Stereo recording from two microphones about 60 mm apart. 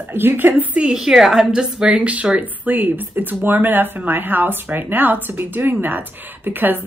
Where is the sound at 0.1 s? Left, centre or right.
Right.